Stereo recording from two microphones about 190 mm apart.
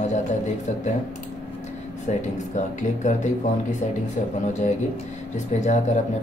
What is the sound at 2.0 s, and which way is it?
Speech, 40° left (ahead or behind).